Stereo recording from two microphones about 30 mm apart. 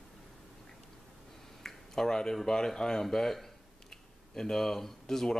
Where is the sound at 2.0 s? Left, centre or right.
Left.